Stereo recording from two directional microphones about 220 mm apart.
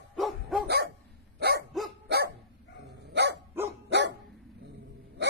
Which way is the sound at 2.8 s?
50° right (ahead or behind).